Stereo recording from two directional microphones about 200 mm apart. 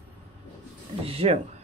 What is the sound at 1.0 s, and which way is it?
Speech, 30° right (ahead or behind).